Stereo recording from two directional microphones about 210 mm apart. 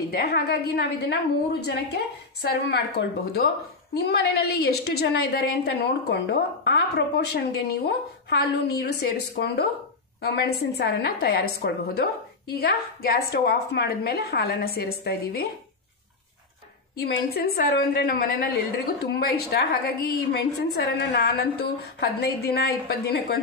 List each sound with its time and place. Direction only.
0.1 s a woman's voice: 50° left (ahead or behind)
4.1 s a woman's voice: 50° left (ahead or behind)
16.9 s a woman's voice: 50° left (ahead or behind)